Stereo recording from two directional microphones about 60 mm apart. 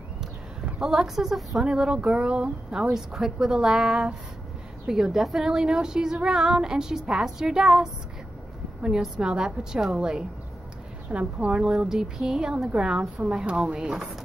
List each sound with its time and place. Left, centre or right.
0.7 s a woman's voice: centre
11.1 s speech: right
11.5 s a woman's voice: centre
13.0 s a woman's voice: centre
13.7 s speech: centre